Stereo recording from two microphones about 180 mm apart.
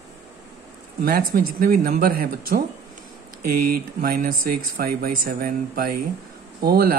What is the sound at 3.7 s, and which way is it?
Speech, 55° right (ahead or behind).